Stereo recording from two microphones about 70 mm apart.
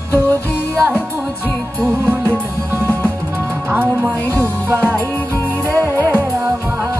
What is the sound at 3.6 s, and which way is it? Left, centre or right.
Music, right.